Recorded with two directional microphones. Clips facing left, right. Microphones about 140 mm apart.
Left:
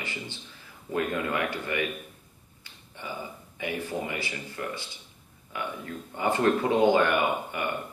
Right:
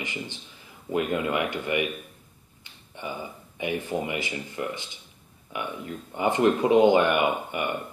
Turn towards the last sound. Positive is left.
turn(degrees=-20)  # may be behind; listen again after turning